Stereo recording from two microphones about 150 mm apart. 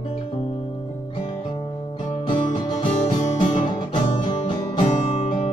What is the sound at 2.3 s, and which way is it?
Music, 35° left (ahead or behind).